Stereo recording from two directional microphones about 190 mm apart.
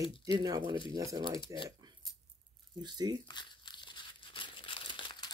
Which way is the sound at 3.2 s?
25° left (ahead or behind).